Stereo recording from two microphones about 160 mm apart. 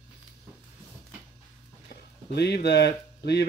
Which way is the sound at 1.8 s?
90° left.